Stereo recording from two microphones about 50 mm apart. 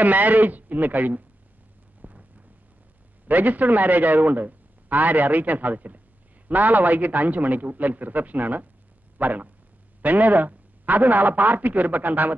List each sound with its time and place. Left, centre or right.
0.0 s a man's voice: right
2.0 s a sound: right
3.3 s a man's voice: right